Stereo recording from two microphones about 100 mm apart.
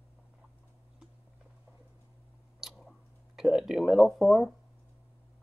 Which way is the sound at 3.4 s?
5° right (ahead or behind).